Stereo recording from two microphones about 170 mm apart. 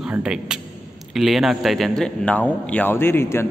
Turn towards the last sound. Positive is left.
turn(degrees=15)  # may be behind; listen again after turning